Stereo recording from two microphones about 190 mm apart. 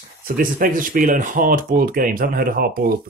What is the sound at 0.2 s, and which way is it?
Speech, 45° right (ahead or behind).